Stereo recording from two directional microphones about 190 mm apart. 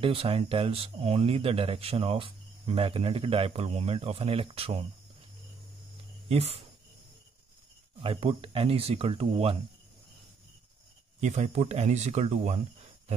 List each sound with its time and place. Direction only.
0.0 s speech: 30° right (ahead or behind)
6.2 s speech: 30° right (ahead or behind)
8.0 s speech: 30° right (ahead or behind)
11.1 s speech: 40° right (ahead or behind)